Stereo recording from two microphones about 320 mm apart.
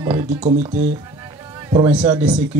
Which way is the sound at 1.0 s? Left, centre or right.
Centre.